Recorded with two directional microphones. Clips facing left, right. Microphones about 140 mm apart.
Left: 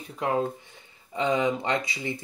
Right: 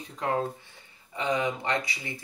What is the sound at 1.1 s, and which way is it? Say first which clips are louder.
Speech: left 4 dB; 25° left (ahead or behind).